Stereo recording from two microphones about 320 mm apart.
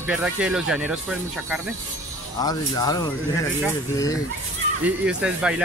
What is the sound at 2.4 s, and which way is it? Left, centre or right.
Speech, centre.